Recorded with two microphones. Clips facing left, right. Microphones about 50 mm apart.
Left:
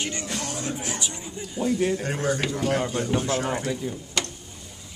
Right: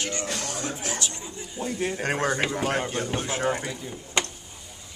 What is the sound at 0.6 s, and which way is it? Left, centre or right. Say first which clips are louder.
Speech: even; centre.